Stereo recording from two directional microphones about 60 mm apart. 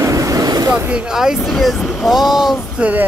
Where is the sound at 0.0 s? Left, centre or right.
Right.